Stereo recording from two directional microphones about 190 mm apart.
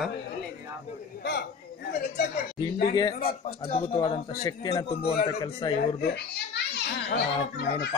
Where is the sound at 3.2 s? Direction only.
55° left (ahead or behind).